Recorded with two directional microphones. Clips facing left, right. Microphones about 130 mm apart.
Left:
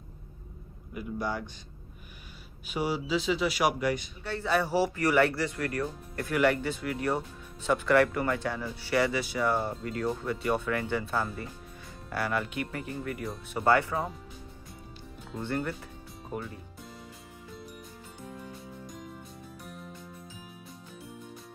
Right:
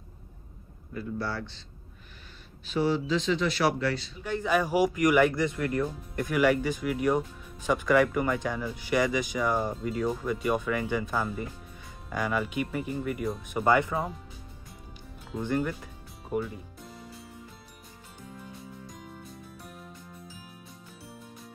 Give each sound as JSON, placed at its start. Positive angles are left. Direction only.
{"t": 0.9, "sound": "a man's voice", "side_deg": 15}
{"t": 2.6, "sound": "a man's voice", "side_deg": 10}
{"t": 4.2, "sound": "speech", "side_deg": -15}
{"t": 13.9, "sound": "speech", "side_deg": 0}
{"t": 15.4, "sound": "speech", "side_deg": -10}